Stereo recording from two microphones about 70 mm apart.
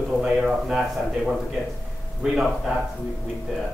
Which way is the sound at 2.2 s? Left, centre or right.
Centre.